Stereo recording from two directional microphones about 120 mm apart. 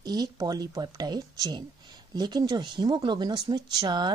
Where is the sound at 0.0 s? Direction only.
35° right (ahead or behind).